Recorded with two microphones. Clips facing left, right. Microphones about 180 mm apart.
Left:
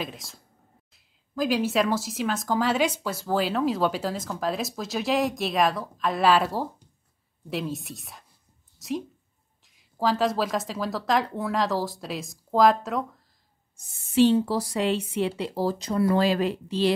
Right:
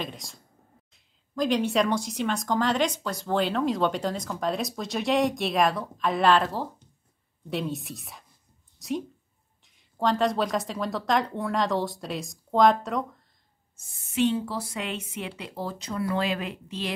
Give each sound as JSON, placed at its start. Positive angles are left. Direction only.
{"t": 0.0, "sound": "speech", "side_deg": 0}
{"t": 8.7, "sound": "a sound", "side_deg": 0}
{"t": 9.8, "sound": "speech", "side_deg": 5}
{"t": 13.7, "sound": "speech", "side_deg": 35}